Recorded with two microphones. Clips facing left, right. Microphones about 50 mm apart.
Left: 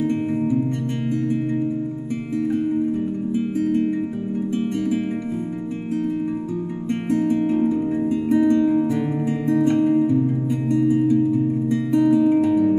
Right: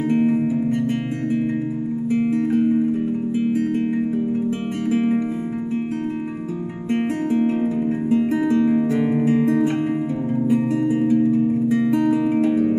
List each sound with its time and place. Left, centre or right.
2.1 s music: right
8.5 s music: right